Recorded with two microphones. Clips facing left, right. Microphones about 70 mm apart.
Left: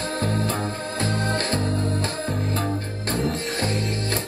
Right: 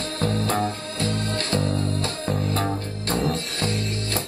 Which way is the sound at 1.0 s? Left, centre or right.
Left.